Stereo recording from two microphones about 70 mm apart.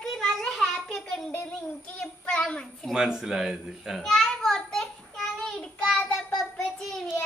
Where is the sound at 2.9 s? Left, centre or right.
Centre.